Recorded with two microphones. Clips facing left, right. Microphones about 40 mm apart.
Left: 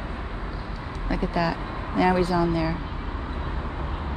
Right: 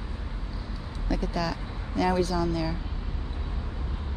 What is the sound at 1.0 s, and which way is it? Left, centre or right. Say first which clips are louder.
Speech: left 4 dB; centre.